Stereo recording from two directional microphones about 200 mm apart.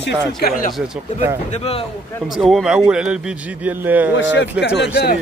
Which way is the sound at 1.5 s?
30° left (ahead or behind).